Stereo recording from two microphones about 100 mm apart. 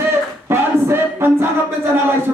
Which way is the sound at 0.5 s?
25° right (ahead or behind).